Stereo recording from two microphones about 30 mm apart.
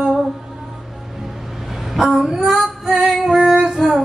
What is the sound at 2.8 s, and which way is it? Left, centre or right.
Female singing, centre.